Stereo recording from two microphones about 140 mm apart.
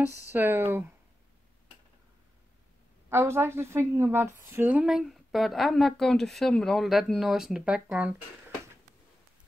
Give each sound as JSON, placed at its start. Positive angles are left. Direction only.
{"t": 0.3, "sound": "speech", "side_deg": -15}
{"t": 3.1, "sound": "a woman's voice", "side_deg": -15}